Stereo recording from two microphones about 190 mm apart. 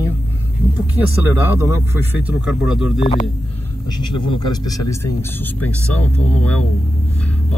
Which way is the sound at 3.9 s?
25° left (ahead or behind).